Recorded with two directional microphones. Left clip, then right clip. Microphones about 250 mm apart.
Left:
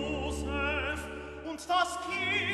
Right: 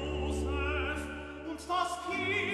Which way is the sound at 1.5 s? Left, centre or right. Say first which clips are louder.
Left 3 dB; left.